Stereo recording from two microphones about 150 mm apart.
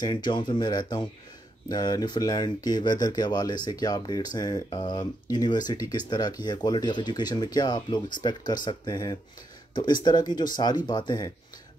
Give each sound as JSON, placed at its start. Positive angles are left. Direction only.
{"t": 0.0, "sound": "speech", "side_deg": 30}